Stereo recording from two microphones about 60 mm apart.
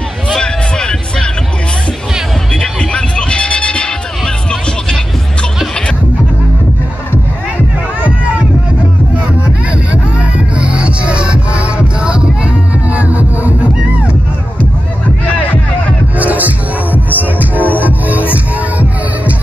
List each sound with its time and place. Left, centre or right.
0.3 s music: centre
2.5 s music: centre
9.8 s music: right
16.2 s music: right